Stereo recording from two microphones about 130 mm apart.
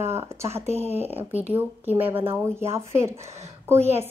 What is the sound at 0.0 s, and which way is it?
Speech, 20° right (ahead or behind).